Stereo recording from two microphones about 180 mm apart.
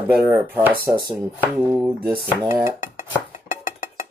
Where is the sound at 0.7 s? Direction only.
55° right (ahead or behind).